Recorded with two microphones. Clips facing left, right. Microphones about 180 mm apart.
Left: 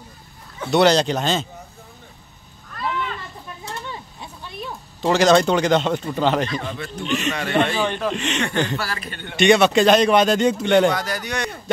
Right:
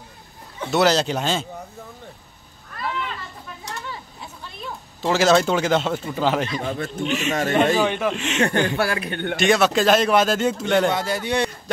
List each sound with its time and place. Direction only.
0.7 s speech: 5° right (ahead or behind)
5.0 s speech: 5° right (ahead or behind)
6.6 s speech: 45° right (ahead or behind)
7.8 s speech: 10° right (ahead or behind)
8.4 s speech: 50° right (ahead or behind)
9.4 s speech: centre (ahead or behind)
10.9 s speech: 25° right (ahead or behind)